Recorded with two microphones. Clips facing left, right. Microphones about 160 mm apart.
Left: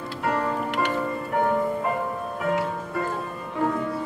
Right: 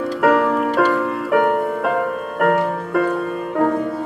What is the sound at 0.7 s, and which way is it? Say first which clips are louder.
Music: right 8 dB; 90° right.